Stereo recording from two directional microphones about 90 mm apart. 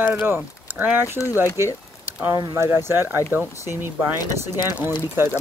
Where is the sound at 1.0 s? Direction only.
35° left (ahead or behind).